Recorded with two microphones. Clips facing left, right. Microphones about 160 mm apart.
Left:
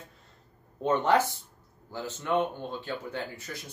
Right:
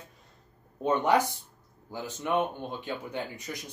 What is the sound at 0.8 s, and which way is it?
Speech, 15° right (ahead or behind).